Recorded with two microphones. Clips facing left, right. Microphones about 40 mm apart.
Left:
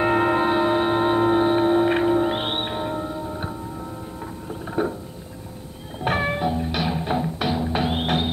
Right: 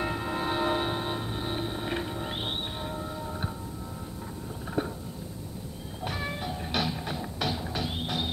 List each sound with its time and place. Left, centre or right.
0.0 s singing bowl: left
0.6 s music: centre
0.9 s music: left
2.4 s music: left
2.7 s music: left
3.1 s music: centre
4.8 s a sound: left
6.0 s music: left
6.6 s music: centre
6.9 s music: left
7.7 s music: left